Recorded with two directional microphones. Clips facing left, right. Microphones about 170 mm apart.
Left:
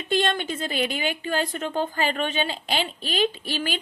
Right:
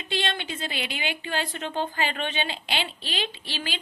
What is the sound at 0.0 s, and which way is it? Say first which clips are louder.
A woman's voice: left 6 dB; 50° left (ahead or behind).